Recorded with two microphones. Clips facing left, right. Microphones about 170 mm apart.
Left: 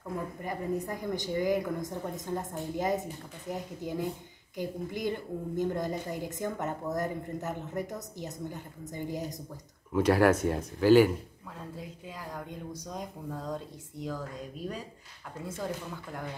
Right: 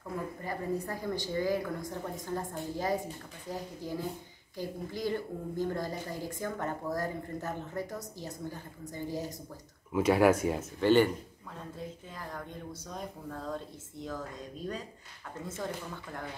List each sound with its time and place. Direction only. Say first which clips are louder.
0.4 s a woman's voice: left 2 dB; 20° left (ahead or behind)
9.9 s speech: left 1 dB; centre (ahead or behind)
12.2 s speech: left 1 dB; 10° left (ahead or behind)
15.3 s speech: left 2 dB; 10° left (ahead or behind)